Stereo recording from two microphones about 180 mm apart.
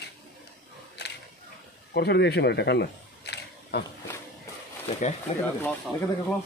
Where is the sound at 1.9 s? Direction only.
65° left (ahead or behind).